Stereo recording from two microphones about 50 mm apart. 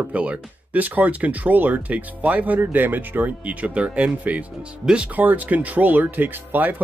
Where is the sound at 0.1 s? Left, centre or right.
Right.